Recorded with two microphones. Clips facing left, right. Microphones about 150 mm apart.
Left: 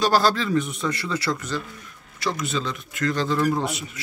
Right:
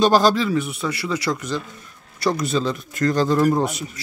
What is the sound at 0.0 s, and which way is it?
Speech, 20° right (ahead or behind).